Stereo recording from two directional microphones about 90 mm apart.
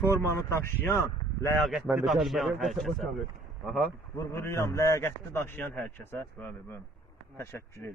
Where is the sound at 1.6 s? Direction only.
Centre (ahead or behind).